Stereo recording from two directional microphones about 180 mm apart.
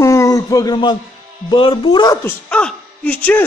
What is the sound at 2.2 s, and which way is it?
Speech, 10° left (ahead or behind).